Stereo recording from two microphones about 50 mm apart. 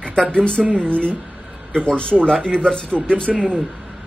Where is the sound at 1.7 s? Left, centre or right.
Centre.